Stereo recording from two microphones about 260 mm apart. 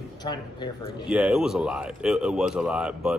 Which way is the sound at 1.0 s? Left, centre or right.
Centre.